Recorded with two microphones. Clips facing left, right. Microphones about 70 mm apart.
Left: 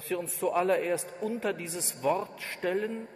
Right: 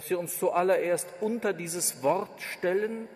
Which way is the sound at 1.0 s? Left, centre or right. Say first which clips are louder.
Right 3 dB; left.